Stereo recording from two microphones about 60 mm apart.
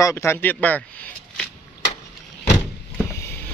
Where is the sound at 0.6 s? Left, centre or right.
Left.